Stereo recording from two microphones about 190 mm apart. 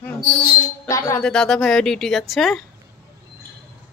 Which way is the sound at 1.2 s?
5° left (ahead or behind).